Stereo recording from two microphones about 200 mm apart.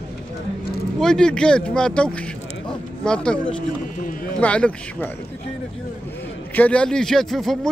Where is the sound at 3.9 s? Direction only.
45° left (ahead or behind).